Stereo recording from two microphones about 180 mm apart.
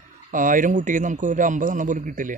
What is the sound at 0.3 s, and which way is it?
A man's voice, 50° right (ahead or behind).